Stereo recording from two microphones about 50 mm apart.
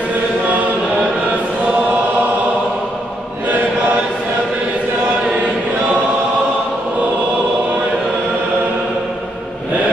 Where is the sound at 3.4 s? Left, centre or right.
Right.